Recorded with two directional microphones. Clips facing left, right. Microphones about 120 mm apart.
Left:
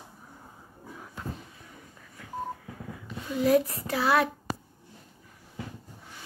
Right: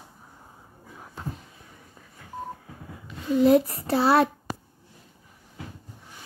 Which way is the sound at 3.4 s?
30° right (ahead or behind).